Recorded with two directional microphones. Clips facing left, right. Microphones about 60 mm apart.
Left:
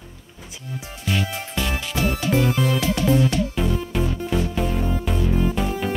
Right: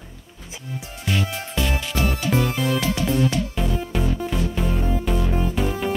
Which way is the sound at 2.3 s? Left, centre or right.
Centre.